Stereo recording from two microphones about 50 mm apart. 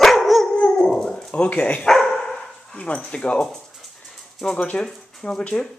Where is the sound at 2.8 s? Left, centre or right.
Left.